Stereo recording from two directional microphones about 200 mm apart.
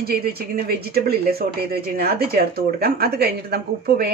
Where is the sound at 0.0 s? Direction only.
50° right (ahead or behind).